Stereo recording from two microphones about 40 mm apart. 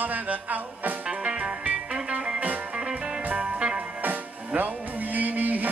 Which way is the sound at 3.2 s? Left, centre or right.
Right.